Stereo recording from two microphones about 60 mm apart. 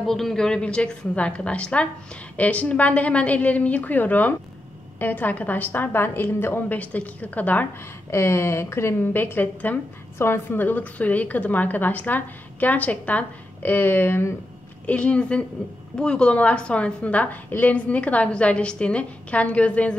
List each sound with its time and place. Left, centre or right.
0.0 s a woman's voice: centre; by 6.8 s left
6.8 s a woman's voice: left
8.1 s a woman's voice: left
10.1 s a woman's voice: left
13.6 s a woman's voice: left
14.9 s a woman's voice: left